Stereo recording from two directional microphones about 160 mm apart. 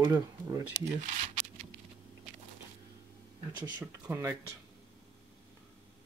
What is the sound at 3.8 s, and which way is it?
Speech, 15° right (ahead or behind).